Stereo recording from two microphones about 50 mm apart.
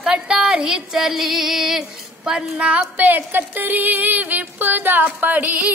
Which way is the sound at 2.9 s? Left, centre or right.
Right.